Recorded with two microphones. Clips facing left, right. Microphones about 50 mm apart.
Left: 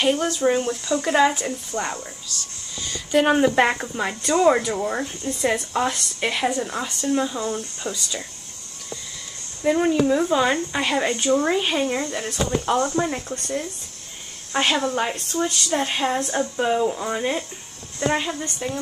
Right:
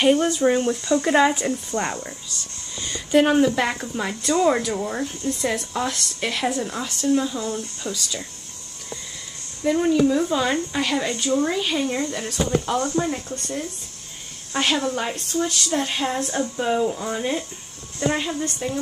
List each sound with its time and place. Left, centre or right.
0.0 s speech: centre
3.1 s speech: centre
3.4 s speech: left
3.9 s speech: centre
9.6 s speech: centre
12.6 s speech: left
14.5 s speech: centre